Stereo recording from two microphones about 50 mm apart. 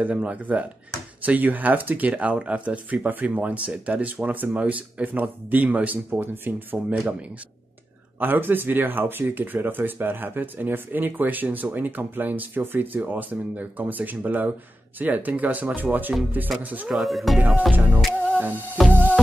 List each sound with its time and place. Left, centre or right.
0.0 s speech: right
6.9 s speech: right
8.2 s speech: right
16.9 s speech: centre
17.7 s speech: right
18.8 s music: centre